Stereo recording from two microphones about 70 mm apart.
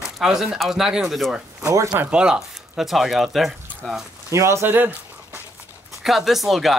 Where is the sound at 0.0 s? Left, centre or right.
Centre.